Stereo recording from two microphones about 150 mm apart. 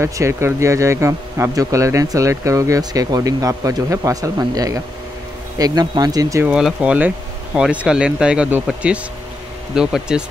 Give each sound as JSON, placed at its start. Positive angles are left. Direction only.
{"t": 0.0, "sound": "speech", "side_deg": -15}
{"t": 6.4, "sound": "speech", "side_deg": -5}